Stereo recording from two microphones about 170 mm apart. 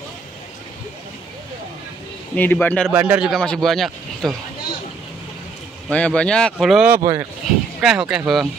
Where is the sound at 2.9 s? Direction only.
10° right (ahead or behind).